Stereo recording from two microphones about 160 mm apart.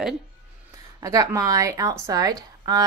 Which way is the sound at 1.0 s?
20° right (ahead or behind).